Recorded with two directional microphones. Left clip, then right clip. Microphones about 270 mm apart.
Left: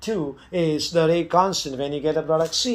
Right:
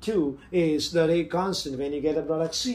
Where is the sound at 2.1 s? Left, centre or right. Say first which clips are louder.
Left 6 dB; left.